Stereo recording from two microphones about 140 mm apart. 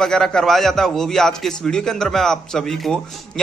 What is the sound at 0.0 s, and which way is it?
A man's voice, 5° left (ahead or behind).